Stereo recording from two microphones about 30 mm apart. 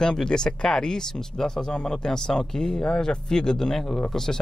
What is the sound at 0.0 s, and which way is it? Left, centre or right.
Speech, left.